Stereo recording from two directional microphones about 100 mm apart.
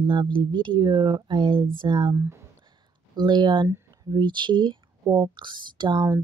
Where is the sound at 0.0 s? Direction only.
50° right (ahead or behind).